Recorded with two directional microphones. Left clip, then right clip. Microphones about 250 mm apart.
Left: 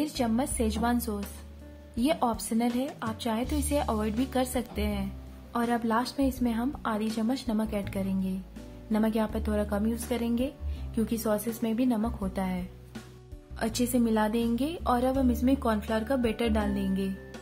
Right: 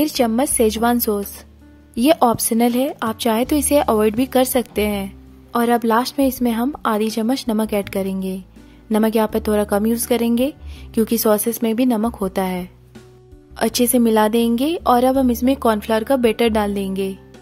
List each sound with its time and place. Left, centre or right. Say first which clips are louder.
0.0 s a woman's voice: right 12 dB; right